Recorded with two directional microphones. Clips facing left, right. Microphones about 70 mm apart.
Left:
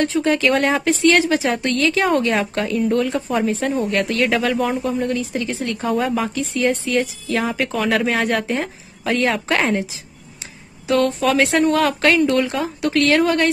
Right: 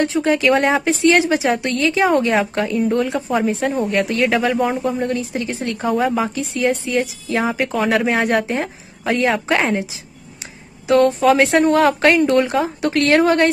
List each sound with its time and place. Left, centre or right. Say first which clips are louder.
0.0 s speech: right 1 dB; right
0.3 s speech: right 3 dB; centre
0.8 s speech: right 1 dB; right
4.8 s speech: right 1 dB; right
5.9 s speech: right 2 dB; centre
10.9 s speech: right 4 dB; right